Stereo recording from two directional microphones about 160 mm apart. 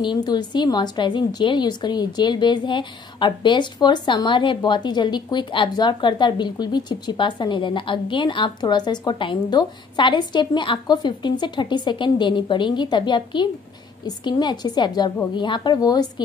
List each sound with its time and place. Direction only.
0.0 s a woman's voice: 25° left (ahead or behind)